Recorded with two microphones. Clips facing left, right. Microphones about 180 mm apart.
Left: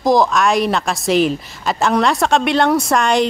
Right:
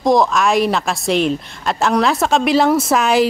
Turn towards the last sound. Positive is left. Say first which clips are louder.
# right 1 dB
turn(degrees=-5)  # may be behind; listen again after turning